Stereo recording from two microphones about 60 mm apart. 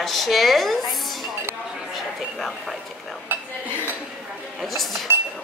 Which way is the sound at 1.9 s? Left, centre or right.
Centre.